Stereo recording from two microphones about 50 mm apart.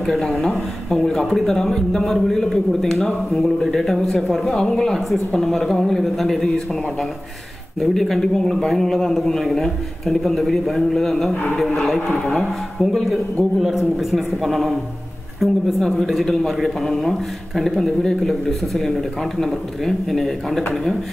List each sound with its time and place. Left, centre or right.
0.1 s a man's voice: centre